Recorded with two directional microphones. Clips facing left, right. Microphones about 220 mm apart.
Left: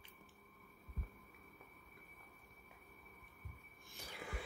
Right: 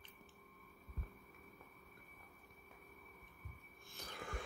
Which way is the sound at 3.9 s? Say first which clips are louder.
Right 1 dB; 10° left (ahead or behind).